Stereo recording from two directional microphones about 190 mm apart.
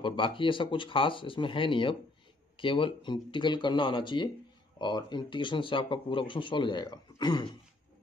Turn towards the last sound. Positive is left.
turn(degrees=25)  # may be behind; listen again after turning